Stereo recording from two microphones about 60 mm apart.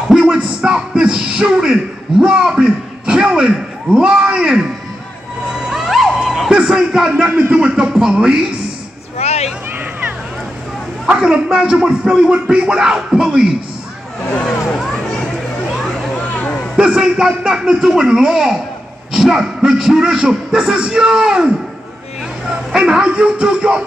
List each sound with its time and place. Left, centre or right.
0.1 s a sound: centre
5.7 s a sound: centre
6.5 s speech: centre
7.2 s speech: right
7.5 s speech: centre
11.1 s speech: centre
16.7 s a man's voice: centre
22.7 s speech: centre